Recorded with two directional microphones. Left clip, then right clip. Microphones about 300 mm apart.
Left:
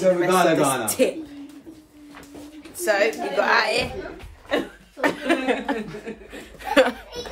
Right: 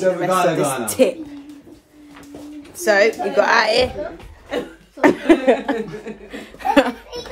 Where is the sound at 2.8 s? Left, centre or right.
Right.